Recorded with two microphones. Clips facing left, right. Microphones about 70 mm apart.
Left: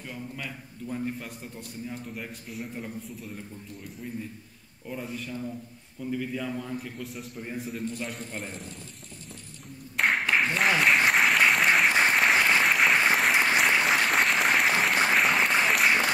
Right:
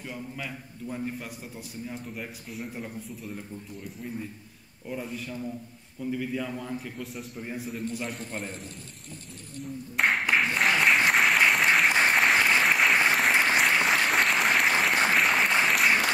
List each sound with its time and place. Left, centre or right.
0.1 s a man's voice: centre
4.8 s a man's voice: centre
9.9 s a sound: centre
10.6 s applause: centre